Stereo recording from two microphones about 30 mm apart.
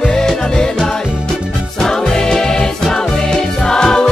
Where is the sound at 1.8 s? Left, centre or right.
Centre.